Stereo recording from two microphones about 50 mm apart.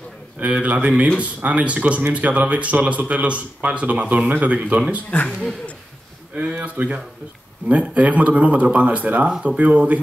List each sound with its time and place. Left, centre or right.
0.4 s speech: right
5.1 s a man's voice: left
6.3 s a man's voice: right